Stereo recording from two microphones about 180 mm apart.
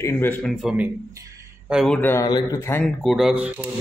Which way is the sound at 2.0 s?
10° left (ahead or behind).